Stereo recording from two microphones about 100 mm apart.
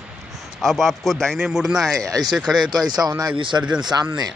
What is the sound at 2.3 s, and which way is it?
Speech, centre (ahead or behind).